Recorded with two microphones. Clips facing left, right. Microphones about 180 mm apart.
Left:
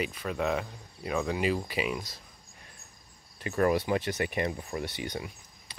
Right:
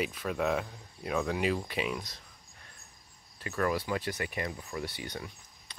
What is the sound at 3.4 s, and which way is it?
Speech, 25° left (ahead or behind).